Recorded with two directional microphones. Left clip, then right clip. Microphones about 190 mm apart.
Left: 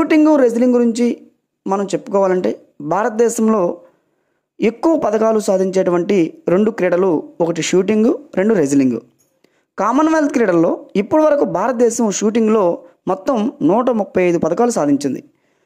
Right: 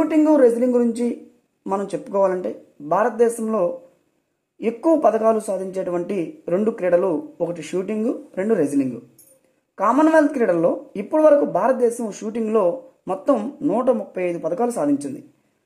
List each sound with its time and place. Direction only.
0.0 s speech: 35° left (ahead or behind)